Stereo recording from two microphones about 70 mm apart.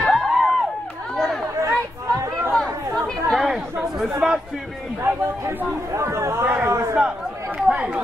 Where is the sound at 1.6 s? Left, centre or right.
Right.